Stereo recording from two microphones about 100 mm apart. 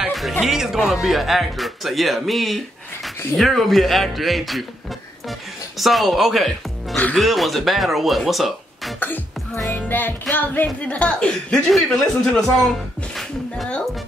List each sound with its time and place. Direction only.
0.0 s music: centre (ahead or behind)
0.4 s speech: 5° right (ahead or behind)
5.8 s speech: centre (ahead or behind)
9.7 s music: 20° left (ahead or behind)
10.3 s speech: 20° left (ahead or behind)